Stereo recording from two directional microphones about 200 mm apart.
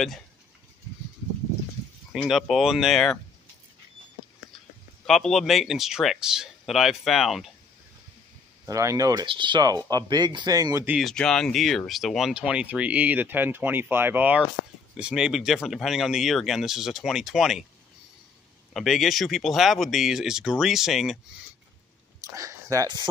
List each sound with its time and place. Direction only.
2.2 s speech: centre (ahead or behind)
5.0 s speech: centre (ahead or behind)
8.6 s speech: 15° right (ahead or behind)
11.0 s speech: centre (ahead or behind)
18.7 s speech: centre (ahead or behind)
22.3 s speech: 15° right (ahead or behind)